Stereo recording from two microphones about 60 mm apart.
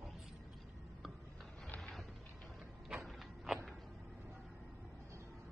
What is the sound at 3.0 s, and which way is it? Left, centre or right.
Walk, centre.